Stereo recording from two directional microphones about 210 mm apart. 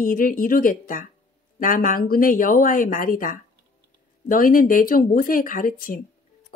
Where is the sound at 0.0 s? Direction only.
40° left (ahead or behind).